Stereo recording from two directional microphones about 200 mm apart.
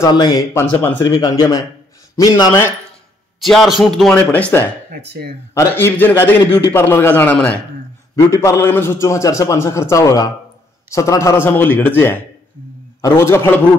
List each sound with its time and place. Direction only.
0.0 s a man's voice: 20° left (ahead or behind)
3.4 s a man's voice: centre (ahead or behind)